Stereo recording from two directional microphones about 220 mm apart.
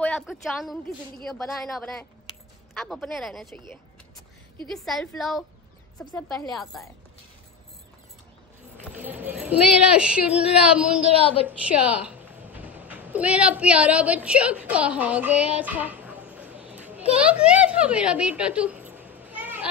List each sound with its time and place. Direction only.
0.0 s a sound: 5° left (ahead or behind)
1.2 s speech: centre (ahead or behind)
4.6 s speech: centre (ahead or behind)
8.9 s speech: 10° right (ahead or behind)
11.1 s a woman's voice: 25° left (ahead or behind)
11.4 s a woman's voice: 5° right (ahead or behind)